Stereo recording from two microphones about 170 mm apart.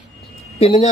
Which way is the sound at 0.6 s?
35° left (ahead or behind).